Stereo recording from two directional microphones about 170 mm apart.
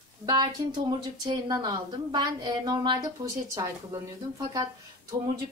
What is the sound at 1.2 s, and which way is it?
A woman's voice, 25° right (ahead or behind).